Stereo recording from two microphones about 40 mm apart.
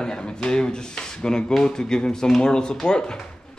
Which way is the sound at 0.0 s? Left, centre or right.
Left.